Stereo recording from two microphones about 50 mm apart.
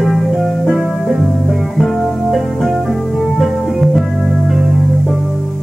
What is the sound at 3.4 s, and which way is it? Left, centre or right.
Music, centre.